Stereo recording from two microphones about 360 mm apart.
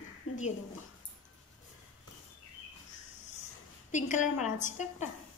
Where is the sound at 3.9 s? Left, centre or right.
Centre.